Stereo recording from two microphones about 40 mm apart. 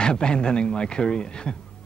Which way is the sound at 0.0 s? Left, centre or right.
Left.